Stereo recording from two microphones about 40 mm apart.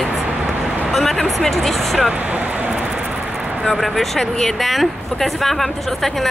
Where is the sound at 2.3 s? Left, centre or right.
Right.